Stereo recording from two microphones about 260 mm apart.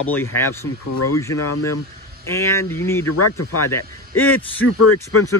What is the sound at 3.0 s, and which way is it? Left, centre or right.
Speech, left.